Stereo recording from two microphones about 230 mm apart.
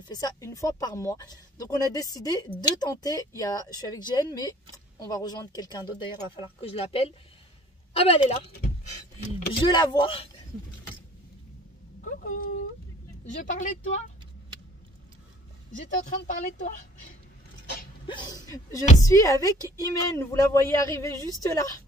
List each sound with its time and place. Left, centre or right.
0.1 s speech: centre
8.5 s a sound: left
9.5 s speech: centre
12.0 s a sound: left
13.4 s speech: left
16.3 s speech: left
18.0 s speech: centre